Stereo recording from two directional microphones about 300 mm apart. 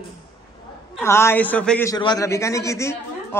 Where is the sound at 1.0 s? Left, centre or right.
Centre.